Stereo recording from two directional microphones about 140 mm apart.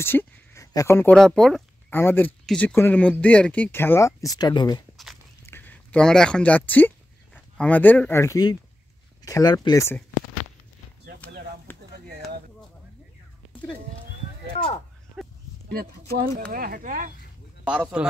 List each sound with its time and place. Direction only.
0.0 s speech: 15° left (ahead or behind)
1.1 s speech: 5° left (ahead or behind)
1.9 s speech: 15° left (ahead or behind); by 4.8 s 30° left (ahead or behind)
5.5 s speech: 15° left (ahead or behind)
11.7 s a sound: 15° left (ahead or behind)
15.7 s speech: 90° right; by 17.1 s 75° right (ahead or behind)
17.6 s speech: 10° right (ahead or behind)